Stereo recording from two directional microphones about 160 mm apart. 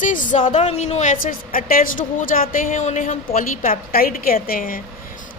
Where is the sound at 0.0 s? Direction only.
55° left (ahead or behind).